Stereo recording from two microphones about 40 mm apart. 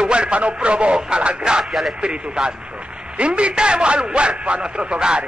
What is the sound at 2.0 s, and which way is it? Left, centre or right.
A man's voice, right.